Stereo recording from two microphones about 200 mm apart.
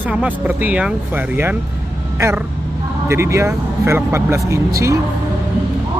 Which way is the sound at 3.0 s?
15° right (ahead or behind).